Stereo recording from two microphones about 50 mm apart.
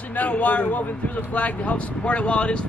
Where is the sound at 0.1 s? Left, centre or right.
Left.